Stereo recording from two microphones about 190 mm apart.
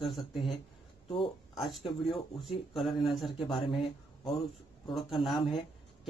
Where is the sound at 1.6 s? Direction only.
Centre (ahead or behind).